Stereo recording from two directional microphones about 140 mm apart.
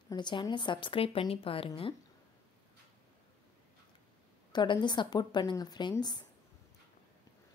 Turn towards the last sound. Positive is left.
turn(degrees=30)  # may be behind; listen again after turning